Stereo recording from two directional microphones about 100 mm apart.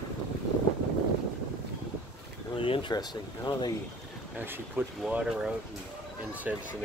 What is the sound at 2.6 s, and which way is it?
Air conditioning, 60° left (ahead or behind).